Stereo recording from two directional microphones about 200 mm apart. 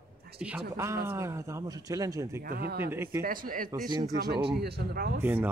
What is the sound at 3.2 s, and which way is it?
Speech, 45° right (ahead or behind).